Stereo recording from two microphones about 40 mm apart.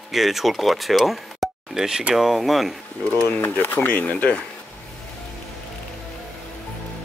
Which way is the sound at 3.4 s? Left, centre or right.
Left.